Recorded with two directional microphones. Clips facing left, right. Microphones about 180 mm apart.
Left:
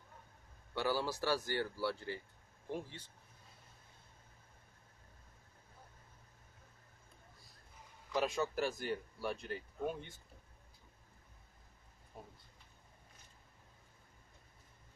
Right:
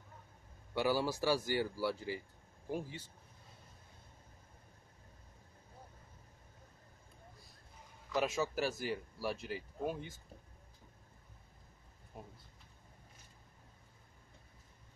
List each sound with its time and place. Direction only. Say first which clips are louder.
0.7 s speech: right 3 dB; 15° right (ahead or behind)
8.1 s speech: right 1 dB; 5° right (ahead or behind)
12.1 s a sound: right 2 dB; 5° right (ahead or behind)